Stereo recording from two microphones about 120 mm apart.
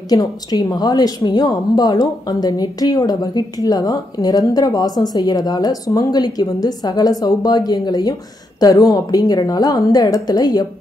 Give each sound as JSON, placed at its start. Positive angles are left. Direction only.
{"t": 0.1, "sound": "speech", "side_deg": 35}